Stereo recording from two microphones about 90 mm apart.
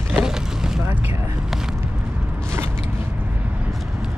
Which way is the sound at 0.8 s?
25° right (ahead or behind).